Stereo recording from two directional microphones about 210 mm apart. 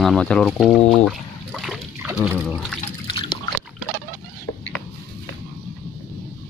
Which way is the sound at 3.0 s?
25° left (ahead or behind).